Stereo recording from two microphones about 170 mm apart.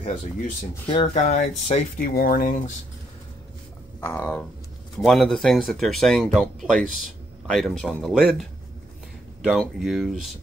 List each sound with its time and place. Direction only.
0.0 s speech: 35° left (ahead or behind)
1.1 s speech: 45° left (ahead or behind)
2.0 s speech: 60° left (ahead or behind)
4.0 s a sound: 10° left (ahead or behind)
4.9 s speech: centre (ahead or behind)